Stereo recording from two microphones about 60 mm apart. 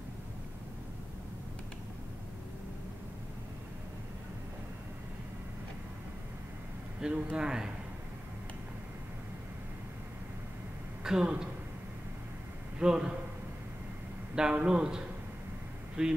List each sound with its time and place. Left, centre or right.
7.0 s speech: centre
11.1 s speech: centre
12.7 s a man's voice: centre
14.3 s speech: centre